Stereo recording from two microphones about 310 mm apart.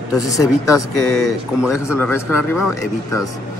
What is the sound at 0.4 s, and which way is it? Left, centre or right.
Speech, centre.